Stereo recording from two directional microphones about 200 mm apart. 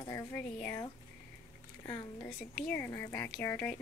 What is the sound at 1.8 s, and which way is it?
Speech, 15° left (ahead or behind).